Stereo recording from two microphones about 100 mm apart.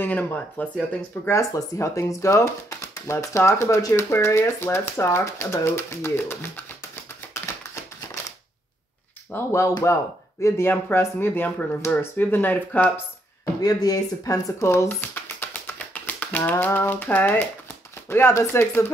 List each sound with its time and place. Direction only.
0.0 s speech: 15° left (ahead or behind)
1.2 s speech: 30° left (ahead or behind)
7.3 s typewriter: 25° left (ahead or behind)
9.3 s speech: 30° left (ahead or behind)
13.6 s speech: 40° left (ahead or behind); by 18.9 s 25° left (ahead or behind)